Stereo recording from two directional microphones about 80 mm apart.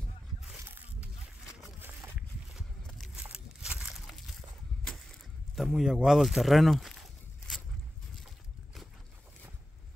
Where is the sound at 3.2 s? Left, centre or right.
Centre.